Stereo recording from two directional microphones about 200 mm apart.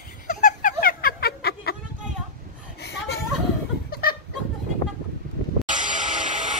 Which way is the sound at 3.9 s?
50° left (ahead or behind).